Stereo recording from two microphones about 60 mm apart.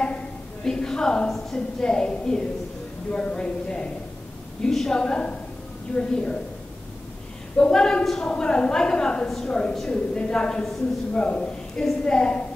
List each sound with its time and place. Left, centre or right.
0.7 s a woman's voice: centre
7.5 s a woman's voice: centre